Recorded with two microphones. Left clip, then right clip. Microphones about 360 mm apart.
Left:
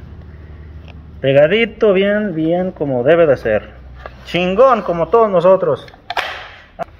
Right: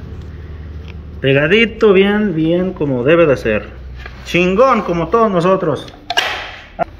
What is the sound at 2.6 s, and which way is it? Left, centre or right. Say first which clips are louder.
Speech: even; left.